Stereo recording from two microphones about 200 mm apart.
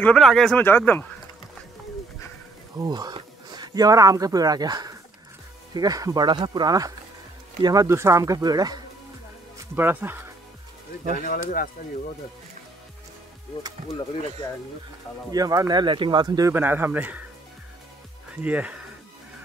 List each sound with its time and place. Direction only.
0.0 s speech: 5° left (ahead or behind)
2.8 s speech: 20° right (ahead or behind)
11.2 s speech: 45° left (ahead or behind)
15.3 s speech: 20° right (ahead or behind)
18.3 s speech: 5° right (ahead or behind)